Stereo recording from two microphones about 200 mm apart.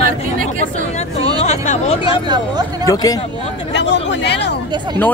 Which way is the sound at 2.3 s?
20° right (ahead or behind).